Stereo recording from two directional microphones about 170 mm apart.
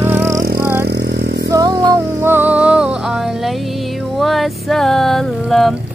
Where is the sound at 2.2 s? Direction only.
10° right (ahead or behind).